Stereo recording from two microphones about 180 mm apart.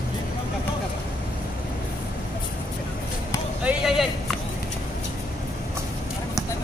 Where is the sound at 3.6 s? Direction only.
Centre (ahead or behind).